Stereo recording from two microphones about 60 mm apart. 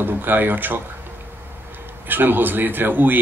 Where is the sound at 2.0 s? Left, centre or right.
Right.